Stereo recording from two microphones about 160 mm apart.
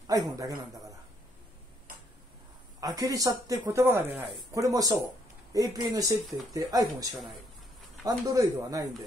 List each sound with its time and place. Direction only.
0.0 s a man's voice: 25° right (ahead or behind)
2.8 s speech: 20° right (ahead or behind)
8.0 s speech: 20° right (ahead or behind)